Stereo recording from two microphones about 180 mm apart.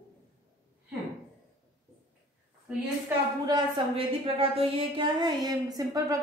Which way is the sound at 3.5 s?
25° right (ahead or behind).